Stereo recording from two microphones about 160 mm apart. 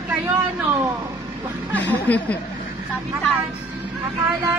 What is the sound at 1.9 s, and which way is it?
Speech, 10° left (ahead or behind).